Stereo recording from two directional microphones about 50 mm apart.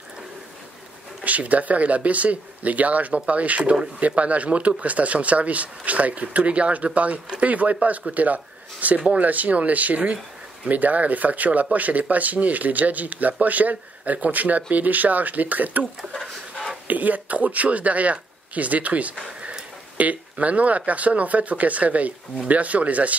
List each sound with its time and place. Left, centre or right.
1.2 s speech: right
16.1 s a sound: centre
16.8 s speech: right